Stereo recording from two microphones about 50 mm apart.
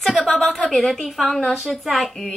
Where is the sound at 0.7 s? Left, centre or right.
Centre.